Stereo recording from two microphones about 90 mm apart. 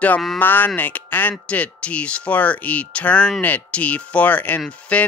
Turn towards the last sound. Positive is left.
turn(degrees=15)  # may be behind; listen again after turning